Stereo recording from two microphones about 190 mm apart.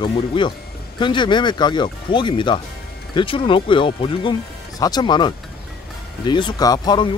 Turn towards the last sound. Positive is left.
turn(degrees=20)  # may be behind; listen again after turning